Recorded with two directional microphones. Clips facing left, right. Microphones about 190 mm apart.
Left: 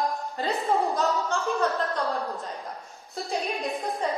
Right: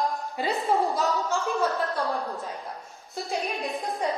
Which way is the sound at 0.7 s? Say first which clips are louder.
Even; centre (ahead or behind).